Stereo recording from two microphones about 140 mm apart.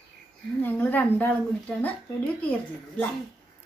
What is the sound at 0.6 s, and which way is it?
A woman's voice, 10° left (ahead or behind).